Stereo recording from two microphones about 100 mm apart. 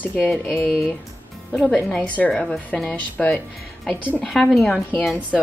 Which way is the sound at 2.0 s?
15° left (ahead or behind).